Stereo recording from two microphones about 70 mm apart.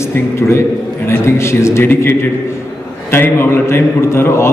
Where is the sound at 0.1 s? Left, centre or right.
Left.